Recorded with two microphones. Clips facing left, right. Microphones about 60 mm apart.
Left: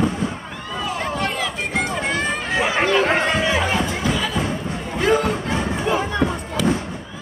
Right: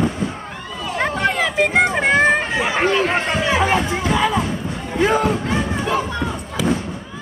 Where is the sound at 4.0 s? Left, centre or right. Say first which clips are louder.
Right 4 dB; right.